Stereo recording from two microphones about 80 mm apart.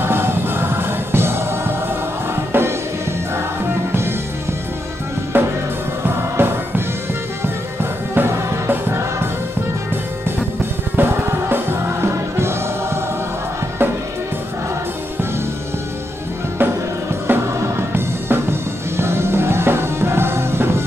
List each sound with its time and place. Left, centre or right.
0.0 s music: right
5.3 s music: right
8.1 s music: right
11.0 s music: right
17.3 s music: right